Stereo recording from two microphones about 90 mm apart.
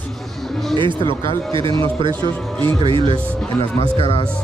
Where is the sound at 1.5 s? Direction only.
80° right.